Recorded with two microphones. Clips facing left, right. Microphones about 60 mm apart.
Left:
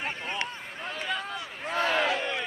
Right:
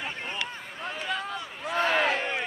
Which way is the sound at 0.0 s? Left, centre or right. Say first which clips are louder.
Left 1 dB; left.